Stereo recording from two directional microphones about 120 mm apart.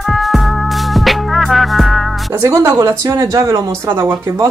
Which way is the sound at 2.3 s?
25° right (ahead or behind).